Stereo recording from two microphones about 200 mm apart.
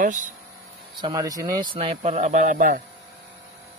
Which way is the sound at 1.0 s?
20° right (ahead or behind).